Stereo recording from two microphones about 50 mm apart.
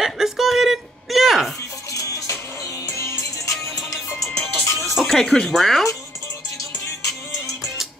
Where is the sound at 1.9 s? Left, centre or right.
Left.